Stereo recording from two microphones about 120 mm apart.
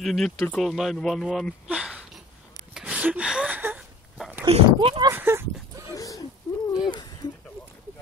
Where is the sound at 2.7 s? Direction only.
10° right (ahead or behind).